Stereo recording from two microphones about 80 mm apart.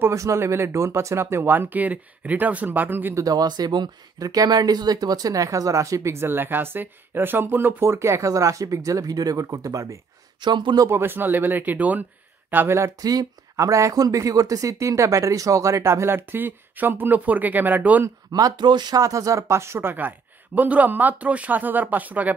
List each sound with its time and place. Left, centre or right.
0.0 s speech: right
3.2 s speech: right
10.4 s speech: right
10.9 s speech: right
13.0 s speech: right
18.3 s speech: right
18.9 s speech: right